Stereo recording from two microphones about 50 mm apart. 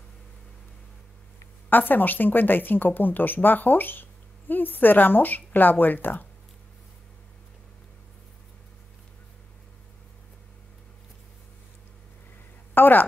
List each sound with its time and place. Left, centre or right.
1.7 s speech: left
12.7 s a woman's voice: left